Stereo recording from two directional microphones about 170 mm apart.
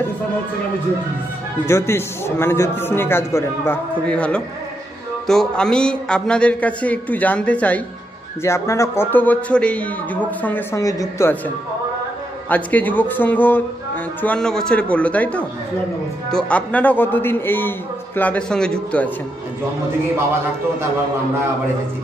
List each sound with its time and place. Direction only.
1.7 s a man's voice: 15° left (ahead or behind)